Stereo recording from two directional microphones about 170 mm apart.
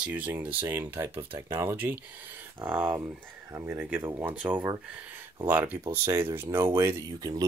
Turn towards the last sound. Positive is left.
turn(degrees=-20)  # may be behind; listen again after turning